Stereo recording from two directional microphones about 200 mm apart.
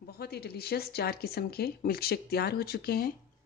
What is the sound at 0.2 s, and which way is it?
A woman's voice, 50° left (ahead or behind).